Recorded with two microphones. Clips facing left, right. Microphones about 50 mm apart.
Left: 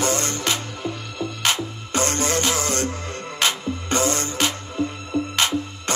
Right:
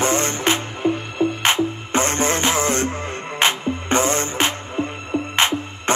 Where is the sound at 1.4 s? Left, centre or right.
Right.